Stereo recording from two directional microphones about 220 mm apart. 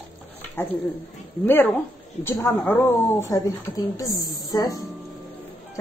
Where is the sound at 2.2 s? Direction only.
10° left (ahead or behind).